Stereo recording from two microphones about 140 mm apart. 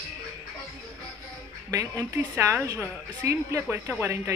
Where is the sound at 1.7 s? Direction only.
25° right (ahead or behind).